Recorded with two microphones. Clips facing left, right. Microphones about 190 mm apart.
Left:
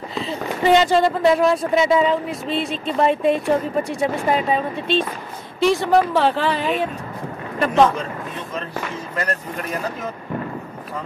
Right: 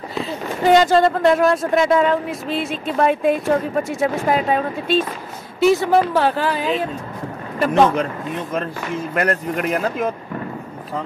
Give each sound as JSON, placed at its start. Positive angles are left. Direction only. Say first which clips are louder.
{"t": 0.1, "sound": "speech", "louder": "even", "side_deg": 0}
{"t": 9.1, "sound": "speech", "louder": "right 6 dB", "side_deg": -65}